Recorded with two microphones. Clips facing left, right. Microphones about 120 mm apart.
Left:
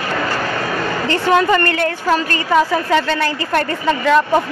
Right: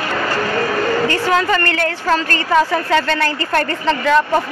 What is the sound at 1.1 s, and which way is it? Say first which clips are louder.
A woman's voice: left 2 dB; 20° left (ahead or behind).